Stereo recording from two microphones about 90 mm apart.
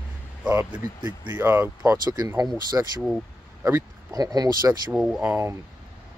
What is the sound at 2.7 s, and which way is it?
Speech, 30° right (ahead or behind).